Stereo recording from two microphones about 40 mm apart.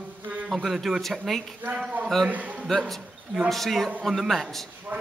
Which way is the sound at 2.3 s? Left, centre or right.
Right.